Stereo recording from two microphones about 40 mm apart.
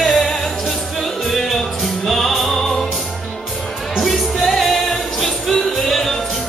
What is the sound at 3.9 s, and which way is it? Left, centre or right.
Music, centre.